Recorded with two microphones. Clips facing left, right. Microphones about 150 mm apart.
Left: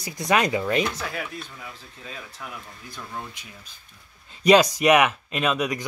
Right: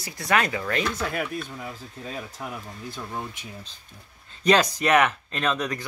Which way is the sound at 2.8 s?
20° right (ahead or behind).